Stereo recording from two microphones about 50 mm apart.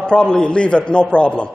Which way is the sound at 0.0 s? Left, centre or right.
Centre.